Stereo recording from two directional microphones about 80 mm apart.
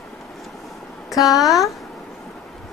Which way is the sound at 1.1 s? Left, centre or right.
Centre.